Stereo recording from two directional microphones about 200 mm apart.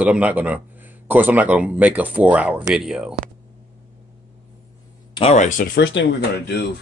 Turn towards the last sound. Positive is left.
turn(degrees=60)  # may be behind; listen again after turning